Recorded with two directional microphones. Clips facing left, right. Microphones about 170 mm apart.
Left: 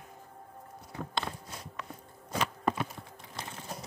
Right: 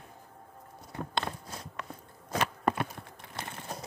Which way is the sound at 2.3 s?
55° right (ahead or behind).